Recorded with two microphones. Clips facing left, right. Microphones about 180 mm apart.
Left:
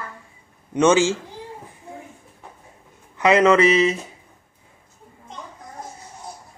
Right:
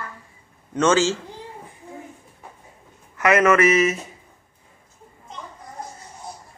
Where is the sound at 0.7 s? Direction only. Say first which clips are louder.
Left 2 dB; 15° left (ahead or behind).